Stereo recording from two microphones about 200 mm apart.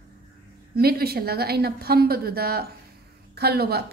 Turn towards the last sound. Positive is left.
turn(degrees=-50)  # may be behind; listen again after turning